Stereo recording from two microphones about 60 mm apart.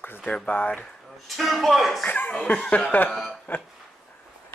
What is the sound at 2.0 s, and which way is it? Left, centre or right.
Speech, left.